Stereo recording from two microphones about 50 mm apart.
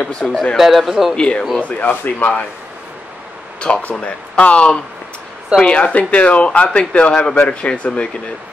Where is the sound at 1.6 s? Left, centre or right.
Left.